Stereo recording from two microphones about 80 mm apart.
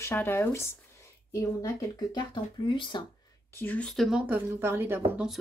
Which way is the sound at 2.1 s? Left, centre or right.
Left.